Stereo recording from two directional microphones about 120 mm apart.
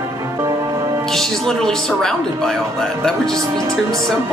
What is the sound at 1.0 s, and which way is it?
Speech, 5° left (ahead or behind).